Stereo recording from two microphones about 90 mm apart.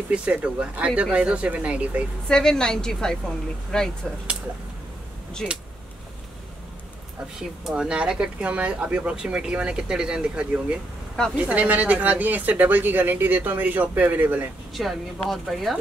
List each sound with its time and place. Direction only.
0.1 s speech: 15° right (ahead or behind)
2.2 s a woman's voice: 10° left (ahead or behind)
5.4 s speech: 5° left (ahead or behind)
7.3 s speech: 10° right (ahead or behind)
14.7 s speech: centre (ahead or behind)